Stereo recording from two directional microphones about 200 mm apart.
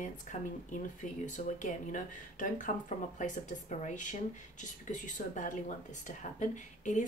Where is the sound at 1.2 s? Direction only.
40° left (ahead or behind).